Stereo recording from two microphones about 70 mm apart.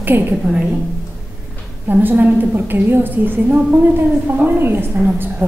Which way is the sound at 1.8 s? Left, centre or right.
Right.